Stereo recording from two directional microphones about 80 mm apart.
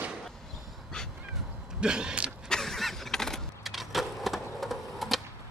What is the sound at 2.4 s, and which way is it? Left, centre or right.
Vehicle, centre.